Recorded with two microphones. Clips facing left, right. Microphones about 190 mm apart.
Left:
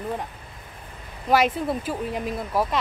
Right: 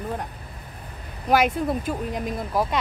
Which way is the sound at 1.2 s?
Centre (ahead or behind).